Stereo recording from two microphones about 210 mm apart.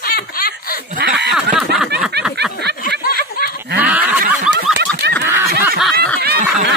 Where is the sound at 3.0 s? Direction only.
45° left (ahead or behind).